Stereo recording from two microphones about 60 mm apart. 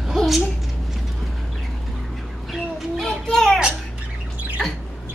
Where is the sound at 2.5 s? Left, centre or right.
Centre.